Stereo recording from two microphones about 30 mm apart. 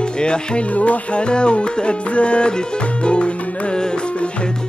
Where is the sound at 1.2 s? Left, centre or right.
Left.